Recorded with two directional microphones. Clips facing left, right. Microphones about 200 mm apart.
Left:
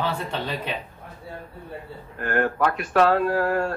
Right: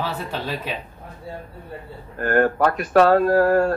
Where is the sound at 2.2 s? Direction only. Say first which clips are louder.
Right 4 dB; 40° right (ahead or behind).